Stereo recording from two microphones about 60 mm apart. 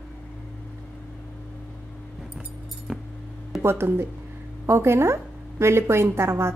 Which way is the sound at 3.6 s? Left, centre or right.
Right.